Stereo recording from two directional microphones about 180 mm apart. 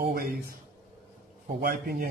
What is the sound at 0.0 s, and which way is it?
Speech, 50° right (ahead or behind).